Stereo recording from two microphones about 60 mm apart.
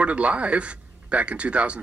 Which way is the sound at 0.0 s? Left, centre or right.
Right.